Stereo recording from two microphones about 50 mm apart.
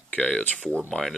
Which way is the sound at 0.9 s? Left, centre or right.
Centre.